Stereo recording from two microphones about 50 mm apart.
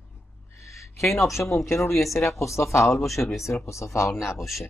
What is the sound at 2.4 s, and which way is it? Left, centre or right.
Speech, left.